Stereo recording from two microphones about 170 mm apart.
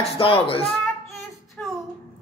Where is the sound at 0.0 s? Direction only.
35° left (ahead or behind).